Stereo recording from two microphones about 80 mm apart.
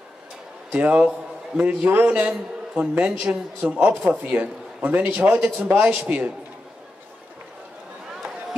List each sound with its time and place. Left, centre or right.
0.7 s a man's voice: right